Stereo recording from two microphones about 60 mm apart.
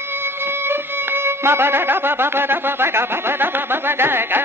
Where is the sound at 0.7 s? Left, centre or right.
Right.